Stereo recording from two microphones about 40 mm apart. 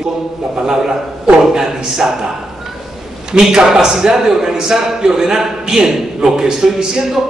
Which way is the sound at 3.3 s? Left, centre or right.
Centre.